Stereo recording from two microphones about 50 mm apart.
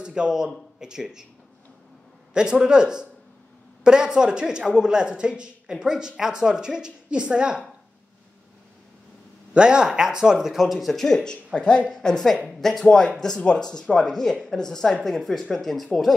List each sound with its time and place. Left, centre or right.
0.0 s speech: centre
2.3 s speech: centre
9.5 s speech: centre
10.9 s speech: centre